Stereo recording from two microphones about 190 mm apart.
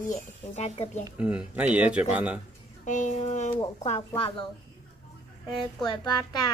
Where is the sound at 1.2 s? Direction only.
5° right (ahead or behind).